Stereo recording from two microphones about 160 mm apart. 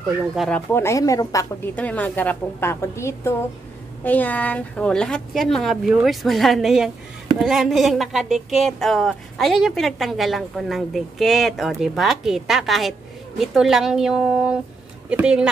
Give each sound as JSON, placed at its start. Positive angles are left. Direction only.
{"t": 0.7, "sound": "a woman's voice", "side_deg": 15}
{"t": 1.8, "sound": "a woman's voice", "side_deg": 10}